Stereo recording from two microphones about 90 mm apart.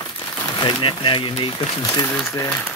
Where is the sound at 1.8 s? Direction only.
35° left (ahead or behind).